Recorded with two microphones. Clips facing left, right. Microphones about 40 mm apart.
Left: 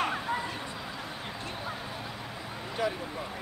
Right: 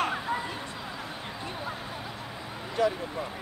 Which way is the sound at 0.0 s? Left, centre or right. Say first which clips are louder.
Right 1 dB; centre.